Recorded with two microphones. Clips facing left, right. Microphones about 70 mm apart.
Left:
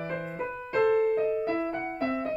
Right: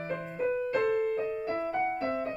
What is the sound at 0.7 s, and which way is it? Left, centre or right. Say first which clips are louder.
Music: left 8 dB; left.